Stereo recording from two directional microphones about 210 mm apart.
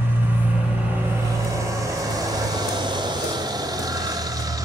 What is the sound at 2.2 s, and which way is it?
Vehicle, 20° right (ahead or behind).